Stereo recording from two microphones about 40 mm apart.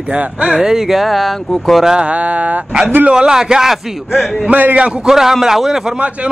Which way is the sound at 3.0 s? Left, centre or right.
Centre.